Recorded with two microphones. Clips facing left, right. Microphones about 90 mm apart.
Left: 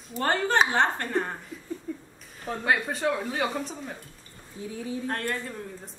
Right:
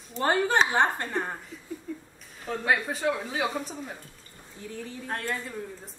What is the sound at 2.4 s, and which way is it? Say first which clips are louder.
Speech: even; centre (ahead or behind).